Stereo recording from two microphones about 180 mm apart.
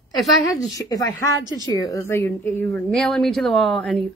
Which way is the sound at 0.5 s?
20° left (ahead or behind).